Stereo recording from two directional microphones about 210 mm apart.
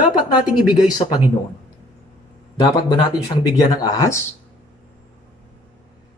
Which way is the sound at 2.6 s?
20° left (ahead or behind).